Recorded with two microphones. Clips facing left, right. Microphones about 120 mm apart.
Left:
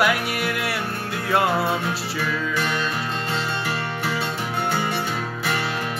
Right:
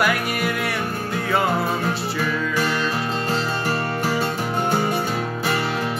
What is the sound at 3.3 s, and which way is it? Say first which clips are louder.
Music: right 3 dB; 40° right (ahead or behind).